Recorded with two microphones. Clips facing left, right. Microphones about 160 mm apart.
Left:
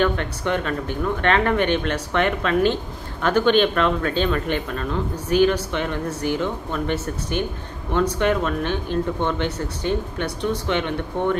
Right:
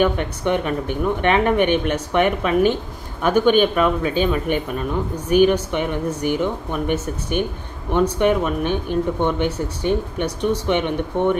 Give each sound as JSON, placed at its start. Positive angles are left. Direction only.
{"t": 0.0, "sound": "speech", "side_deg": -15}